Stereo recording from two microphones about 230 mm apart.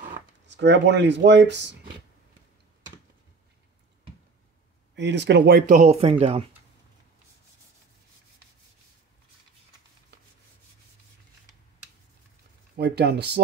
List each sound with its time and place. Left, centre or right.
0.5 s speech: right
4.9 s speech: right
10.1 s rub: right
12.7 s speech: right